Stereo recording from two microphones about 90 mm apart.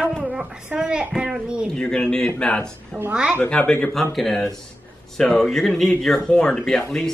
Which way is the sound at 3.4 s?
15° left (ahead or behind).